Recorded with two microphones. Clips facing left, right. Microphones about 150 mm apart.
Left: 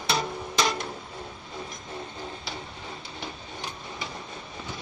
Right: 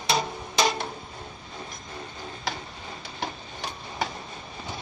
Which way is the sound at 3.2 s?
85° right.